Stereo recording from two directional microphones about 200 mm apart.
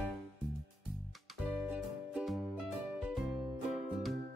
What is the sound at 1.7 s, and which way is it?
Music, 5° right (ahead or behind).